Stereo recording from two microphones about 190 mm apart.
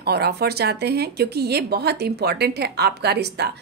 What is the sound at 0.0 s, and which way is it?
A woman's voice, 55° right (ahead or behind).